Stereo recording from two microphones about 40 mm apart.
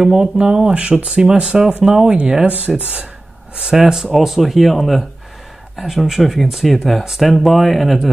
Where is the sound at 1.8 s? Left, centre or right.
Centre.